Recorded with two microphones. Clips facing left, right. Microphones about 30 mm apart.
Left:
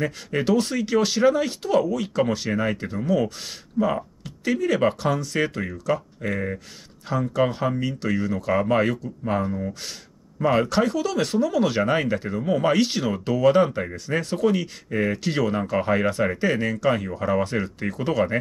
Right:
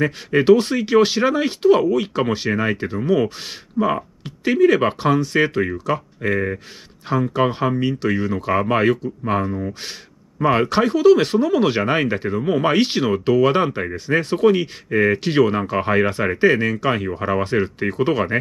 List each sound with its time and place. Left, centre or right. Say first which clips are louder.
0.0 s speech: right 7 dB; right